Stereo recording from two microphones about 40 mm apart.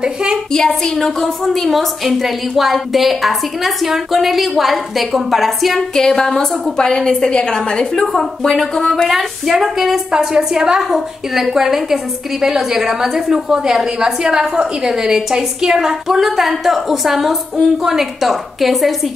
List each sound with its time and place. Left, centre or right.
0.0 s a woman's voice: right
0.5 s speech: centre
0.9 s a woman's voice: centre
5.9 s speech: centre
6.8 s a woman's voice: left
9.5 s a woman's voice: centre